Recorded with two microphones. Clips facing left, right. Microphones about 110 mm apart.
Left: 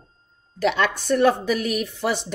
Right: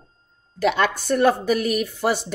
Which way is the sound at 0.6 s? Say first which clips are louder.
Right 1 dB; 45° right (ahead or behind).